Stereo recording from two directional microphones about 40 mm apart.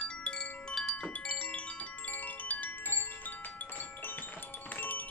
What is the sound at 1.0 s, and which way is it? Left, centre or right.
Music, left.